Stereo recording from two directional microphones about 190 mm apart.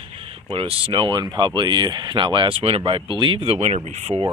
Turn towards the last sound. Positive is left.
turn(degrees=-35)  # may be behind; listen again after turning